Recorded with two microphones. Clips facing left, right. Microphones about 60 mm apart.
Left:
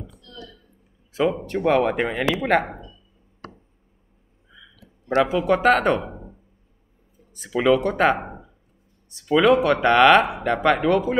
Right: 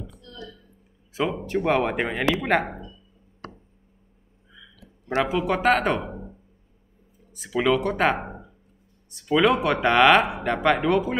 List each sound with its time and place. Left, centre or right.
0.2 s a sound: right
1.1 s speech: centre
5.2 s speech: centre
7.3 s speech: centre